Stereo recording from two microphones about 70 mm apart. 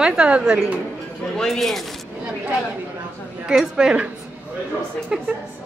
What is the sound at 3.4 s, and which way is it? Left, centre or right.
Speech, centre.